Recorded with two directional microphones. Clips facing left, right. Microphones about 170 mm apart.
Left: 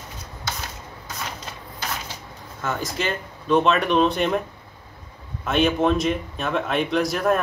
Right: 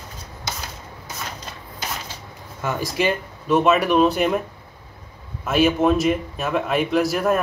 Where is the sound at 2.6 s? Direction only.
10° right (ahead or behind).